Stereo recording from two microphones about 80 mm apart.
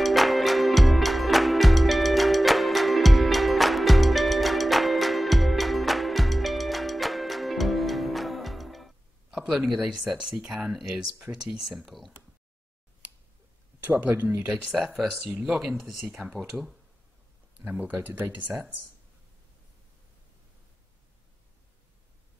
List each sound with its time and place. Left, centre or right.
0.0 s music: centre
9.5 s speech: centre
13.8 s speech: right
14.7 s speech: centre
17.6 s speech: centre